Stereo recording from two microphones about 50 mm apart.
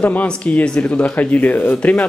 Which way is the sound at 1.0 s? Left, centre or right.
Left.